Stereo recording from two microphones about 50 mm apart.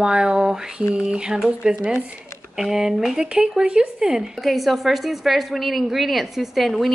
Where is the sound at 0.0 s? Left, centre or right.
Centre.